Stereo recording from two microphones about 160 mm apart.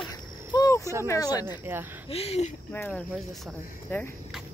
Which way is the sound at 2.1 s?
40° left (ahead or behind).